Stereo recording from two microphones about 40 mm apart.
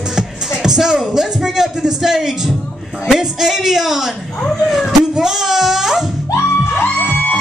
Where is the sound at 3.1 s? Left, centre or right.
Centre.